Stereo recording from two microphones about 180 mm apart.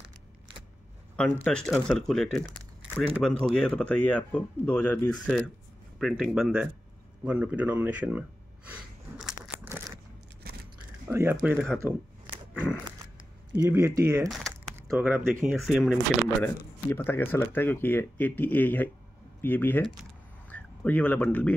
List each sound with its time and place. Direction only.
1.1 s speech: 5° left (ahead or behind)
8.6 s a sound: 10° right (ahead or behind)
11.1 s speech: 15° right (ahead or behind)
11.4 s speech: centre (ahead or behind)
13.7 s speech: 15° right (ahead or behind)
15.6 s speech: centre (ahead or behind)
16.4 s speech: 10° left (ahead or behind)